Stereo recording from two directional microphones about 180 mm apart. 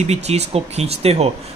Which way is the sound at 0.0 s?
35° right (ahead or behind).